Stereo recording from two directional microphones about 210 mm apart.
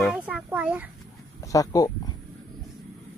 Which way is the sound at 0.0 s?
5° right (ahead or behind).